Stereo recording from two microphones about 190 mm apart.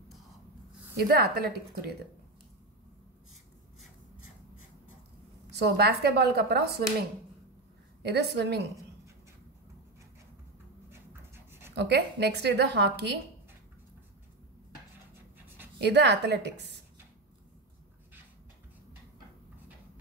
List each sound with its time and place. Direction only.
0.9 s a woman's voice: 55° right (ahead or behind)
5.6 s a woman's voice: 55° right (ahead or behind)
8.0 s a woman's voice: 60° right (ahead or behind)
11.7 s a woman's voice: 65° right (ahead or behind)
15.1 s dog: 10° right (ahead or behind)
15.8 s a woman's voice: 65° right (ahead or behind)